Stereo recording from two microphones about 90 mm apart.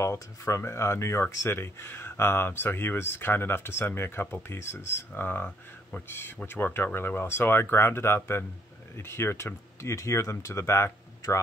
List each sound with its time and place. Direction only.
0.0 s speech: 30° left (ahead or behind)